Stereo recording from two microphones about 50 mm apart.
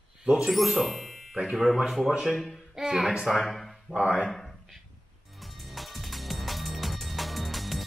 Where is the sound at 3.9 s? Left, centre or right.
Right.